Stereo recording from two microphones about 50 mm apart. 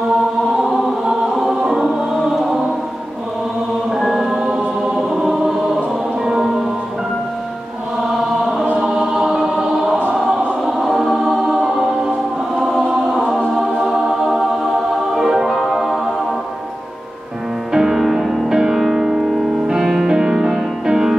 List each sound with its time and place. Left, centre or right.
0.7 s chant: centre
3.9 s music: centre
4.8 s choir: centre
6.2 s tubular bells: centre
8.7 s choir: centre
13.6 s music: centre
17.7 s music: centre